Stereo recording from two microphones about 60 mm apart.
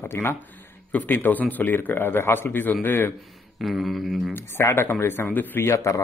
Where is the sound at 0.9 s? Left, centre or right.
Left.